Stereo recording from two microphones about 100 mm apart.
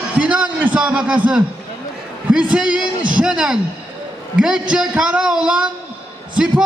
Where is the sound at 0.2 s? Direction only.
10° right (ahead or behind).